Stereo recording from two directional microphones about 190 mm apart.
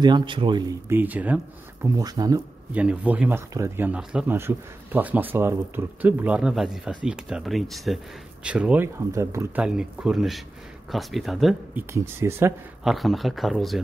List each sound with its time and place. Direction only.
0.0 s speech: 25° right (ahead or behind); by 1.9 s 10° right (ahead or behind)
2.0 s speech: 20° right (ahead or behind)
2.7 s speech: 5° right (ahead or behind)
9.7 s speech: 5° right (ahead or behind)
11.9 s speech: 15° right (ahead or behind)
12.8 s speech: centre (ahead or behind)